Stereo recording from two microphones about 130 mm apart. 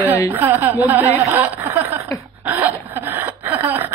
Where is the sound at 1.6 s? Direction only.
20° right (ahead or behind).